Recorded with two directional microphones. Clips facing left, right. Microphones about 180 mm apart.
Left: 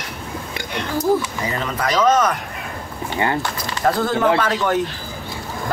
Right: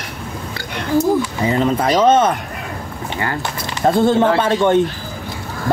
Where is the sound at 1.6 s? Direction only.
30° right (ahead or behind).